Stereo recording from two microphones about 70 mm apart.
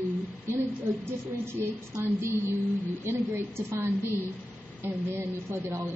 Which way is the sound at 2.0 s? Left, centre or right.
Right.